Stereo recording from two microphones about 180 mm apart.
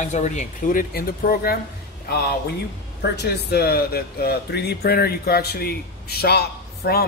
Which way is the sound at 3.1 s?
60° left (ahead or behind).